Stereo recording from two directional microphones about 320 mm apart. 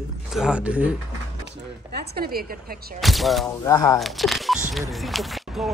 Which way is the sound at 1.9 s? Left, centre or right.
Right.